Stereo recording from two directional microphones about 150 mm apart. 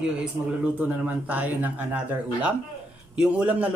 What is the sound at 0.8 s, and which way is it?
Speech, 10° right (ahead or behind).